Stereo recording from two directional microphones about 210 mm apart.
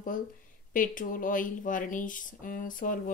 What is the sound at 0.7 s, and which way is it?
Speech, 40° left (ahead or behind).